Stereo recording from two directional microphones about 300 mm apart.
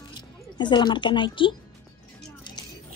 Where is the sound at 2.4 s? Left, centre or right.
Centre.